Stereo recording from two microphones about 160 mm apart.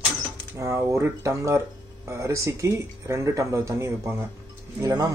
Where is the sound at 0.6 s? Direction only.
20° right (ahead or behind).